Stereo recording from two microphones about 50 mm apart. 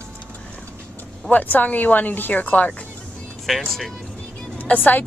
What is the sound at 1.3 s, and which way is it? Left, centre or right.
Speech, left.